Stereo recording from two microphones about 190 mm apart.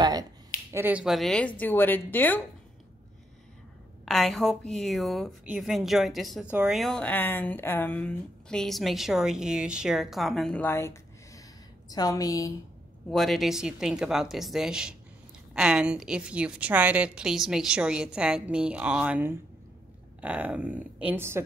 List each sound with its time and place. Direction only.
0.0 s finger snapping: 20° right (ahead or behind)
0.7 s a woman's voice: 10° right (ahead or behind); by 2.4 s 10° left (ahead or behind)
4.0 s a woman's voice: centre (ahead or behind); by 12.5 s 20° left (ahead or behind)
13.1 s speech: centre (ahead or behind)